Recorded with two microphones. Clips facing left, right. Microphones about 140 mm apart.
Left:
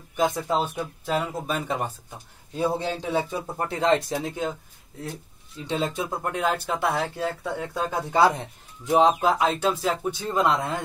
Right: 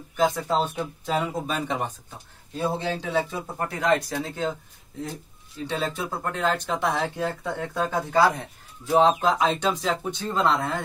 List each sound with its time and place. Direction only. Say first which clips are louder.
0.1 s speech: right 1 dB; 15° left (ahead or behind)
2.6 s a man's voice: left 1 dB; 15° left (ahead or behind)
5.7 s speech: left 2 dB; 20° left (ahead or behind)
8.1 s speech: left 2 dB; 25° left (ahead or behind)